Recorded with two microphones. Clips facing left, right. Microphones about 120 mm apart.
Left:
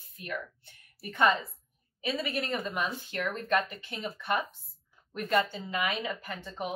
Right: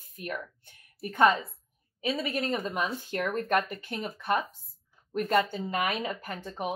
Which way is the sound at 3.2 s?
50° right (ahead or behind).